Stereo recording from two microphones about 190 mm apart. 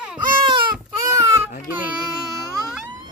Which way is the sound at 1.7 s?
5° right (ahead or behind).